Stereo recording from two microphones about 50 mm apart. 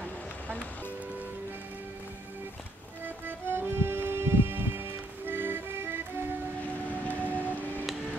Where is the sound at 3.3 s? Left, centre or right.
Right.